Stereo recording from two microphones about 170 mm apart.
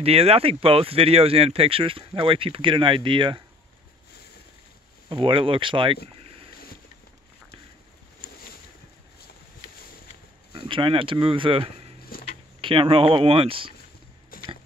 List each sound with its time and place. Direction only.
0.0 s speech: 35° right (ahead or behind)
5.1 s speech: 30° right (ahead or behind)
6.0 s boat: 35° right (ahead or behind)
10.7 s speech: 30° right (ahead or behind)
12.1 s a sound: 60° left (ahead or behind)
12.5 s speech: 30° right (ahead or behind)
14.3 s a sound: 55° left (ahead or behind)